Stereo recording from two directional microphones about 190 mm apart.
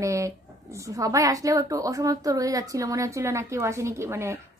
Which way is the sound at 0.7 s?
15° right (ahead or behind).